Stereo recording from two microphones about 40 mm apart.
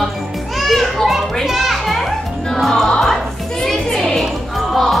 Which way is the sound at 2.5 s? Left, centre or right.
Centre.